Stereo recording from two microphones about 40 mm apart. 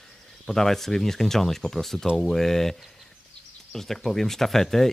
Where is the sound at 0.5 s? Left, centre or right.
Centre.